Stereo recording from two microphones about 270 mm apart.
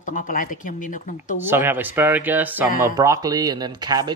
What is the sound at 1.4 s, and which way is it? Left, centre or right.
Speech, centre.